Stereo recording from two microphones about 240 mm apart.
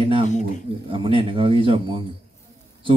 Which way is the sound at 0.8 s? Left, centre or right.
Right.